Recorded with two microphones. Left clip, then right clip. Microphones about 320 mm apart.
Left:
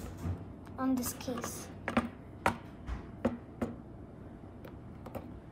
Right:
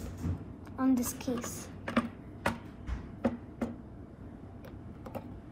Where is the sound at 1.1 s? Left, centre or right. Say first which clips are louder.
Right 3 dB; left.